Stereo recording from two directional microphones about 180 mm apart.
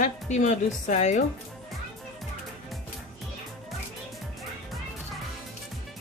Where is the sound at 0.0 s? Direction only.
40° left (ahead or behind).